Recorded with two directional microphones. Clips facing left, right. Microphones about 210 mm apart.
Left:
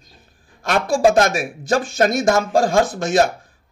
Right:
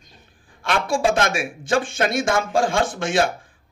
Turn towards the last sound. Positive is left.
turn(degrees=40)  # may be behind; listen again after turning